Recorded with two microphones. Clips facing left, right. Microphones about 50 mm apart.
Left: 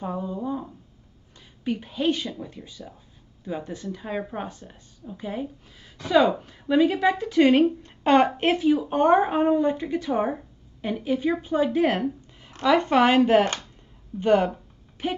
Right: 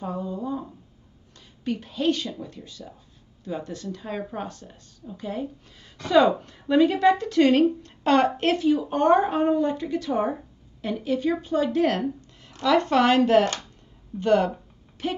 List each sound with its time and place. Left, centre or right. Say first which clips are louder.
0.0 s a woman's voice: left 1 dB; centre